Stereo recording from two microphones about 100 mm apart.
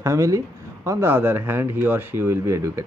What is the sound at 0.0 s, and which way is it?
A man's voice, 30° right (ahead or behind).